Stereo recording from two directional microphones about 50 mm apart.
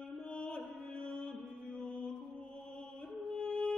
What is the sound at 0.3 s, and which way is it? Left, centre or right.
Mantra, left.